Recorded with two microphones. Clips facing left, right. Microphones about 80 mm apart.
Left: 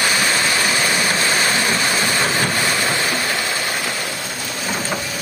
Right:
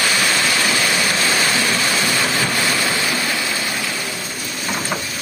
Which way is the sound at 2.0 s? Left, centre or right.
Left.